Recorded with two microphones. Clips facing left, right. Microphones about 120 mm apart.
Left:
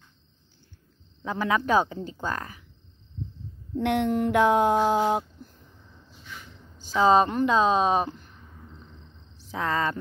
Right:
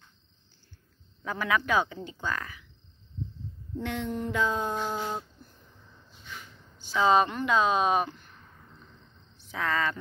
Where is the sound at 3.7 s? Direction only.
65° left (ahead or behind).